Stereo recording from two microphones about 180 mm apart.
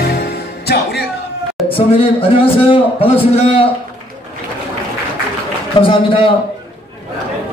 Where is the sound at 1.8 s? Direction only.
30° left (ahead or behind).